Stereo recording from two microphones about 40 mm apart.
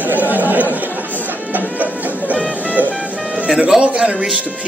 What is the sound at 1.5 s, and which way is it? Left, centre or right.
Music, right.